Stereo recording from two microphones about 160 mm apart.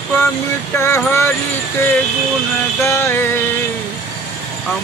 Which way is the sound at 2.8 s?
15° left (ahead or behind).